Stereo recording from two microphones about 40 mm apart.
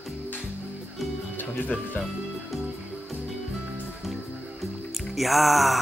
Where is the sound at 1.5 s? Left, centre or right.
Left.